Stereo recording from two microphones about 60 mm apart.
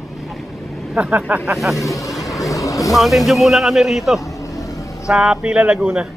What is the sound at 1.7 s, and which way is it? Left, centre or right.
Speech, left.